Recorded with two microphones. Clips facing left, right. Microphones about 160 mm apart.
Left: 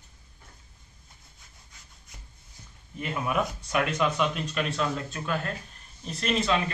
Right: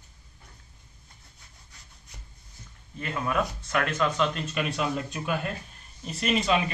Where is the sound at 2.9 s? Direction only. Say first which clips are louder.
Even; 15° left (ahead or behind).